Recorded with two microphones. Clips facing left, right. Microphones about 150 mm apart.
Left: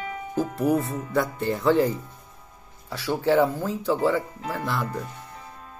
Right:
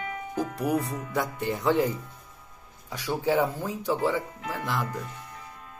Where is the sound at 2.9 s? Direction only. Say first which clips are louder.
Left 4 dB; 15° right (ahead or behind).